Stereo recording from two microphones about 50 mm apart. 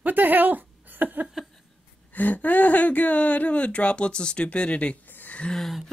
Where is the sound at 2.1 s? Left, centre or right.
Left.